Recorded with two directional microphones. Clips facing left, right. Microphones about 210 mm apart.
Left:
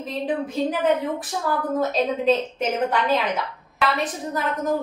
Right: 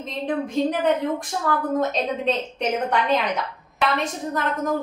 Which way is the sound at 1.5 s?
5° left (ahead or behind).